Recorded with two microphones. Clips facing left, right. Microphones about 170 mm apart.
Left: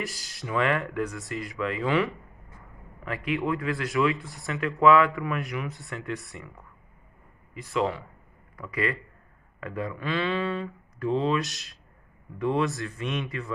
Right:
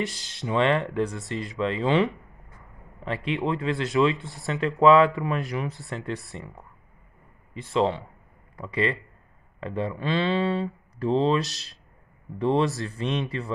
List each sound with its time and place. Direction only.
0.0 s speech: 20° right (ahead or behind)
7.5 s speech: 30° right (ahead or behind)